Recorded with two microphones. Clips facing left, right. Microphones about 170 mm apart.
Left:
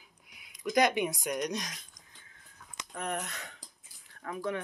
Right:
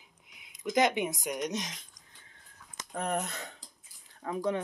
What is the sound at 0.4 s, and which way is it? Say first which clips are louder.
Speech: even; 20° right (ahead or behind).